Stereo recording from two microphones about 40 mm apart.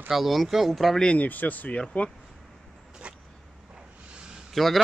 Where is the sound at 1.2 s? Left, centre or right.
Left.